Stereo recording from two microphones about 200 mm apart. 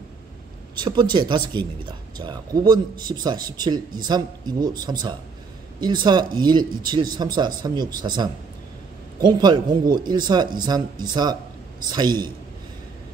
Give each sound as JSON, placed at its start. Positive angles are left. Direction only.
{"t": 0.7, "sound": "speech", "side_deg": -20}